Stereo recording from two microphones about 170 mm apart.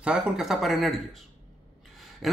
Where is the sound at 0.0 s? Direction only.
5° right (ahead or behind).